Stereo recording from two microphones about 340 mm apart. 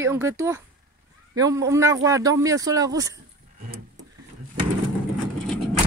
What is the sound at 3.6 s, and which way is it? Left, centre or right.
Vehicle, right.